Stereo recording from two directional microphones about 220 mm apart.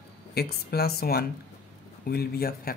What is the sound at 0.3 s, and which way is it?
Speech, 45° left (ahead or behind).